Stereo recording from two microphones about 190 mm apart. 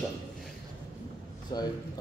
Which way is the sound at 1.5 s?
20° left (ahead or behind).